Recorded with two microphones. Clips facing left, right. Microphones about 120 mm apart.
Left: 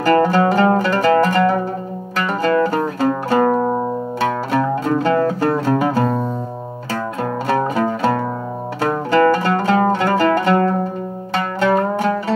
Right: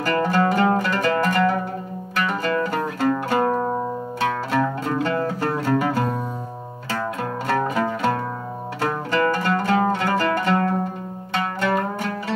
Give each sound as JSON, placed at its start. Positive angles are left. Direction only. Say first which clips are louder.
{"t": 0.0, "sound": "music", "louder": "left 6 dB", "side_deg": 40}
{"t": 8.8, "sound": "music", "louder": "left 7 dB", "side_deg": 45}
{"t": 9.7, "sound": "zither", "louder": "left 5 dB", "side_deg": 35}